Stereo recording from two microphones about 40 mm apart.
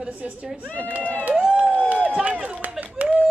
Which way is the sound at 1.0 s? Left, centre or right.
Left.